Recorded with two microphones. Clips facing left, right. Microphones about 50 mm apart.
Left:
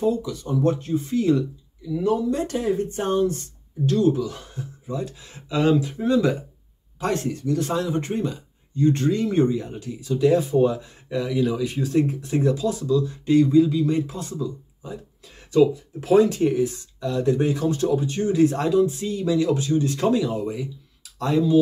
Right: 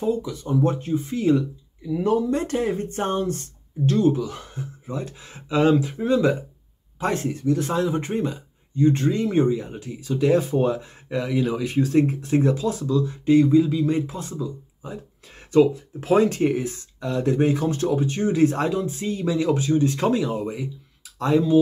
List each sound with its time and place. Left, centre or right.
0.0 s speech: right
2.0 s speech: right
9.9 s speech: right